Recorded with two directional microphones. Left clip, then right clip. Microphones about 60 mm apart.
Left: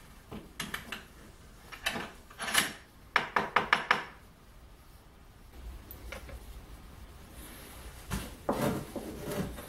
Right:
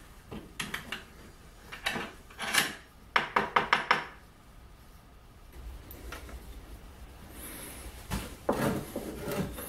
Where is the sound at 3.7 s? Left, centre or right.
Centre.